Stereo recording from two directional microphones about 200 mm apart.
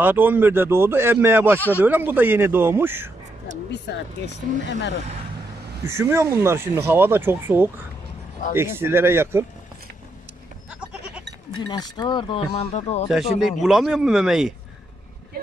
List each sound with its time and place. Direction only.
0.0 s speech: 10° right (ahead or behind)
3.7 s speech: 60° left (ahead or behind)
5.9 s speech: 15° right (ahead or behind)
10.7 s goat: 5° right (ahead or behind)
11.6 s speech: 20° left (ahead or behind)
13.4 s speech: centre (ahead or behind)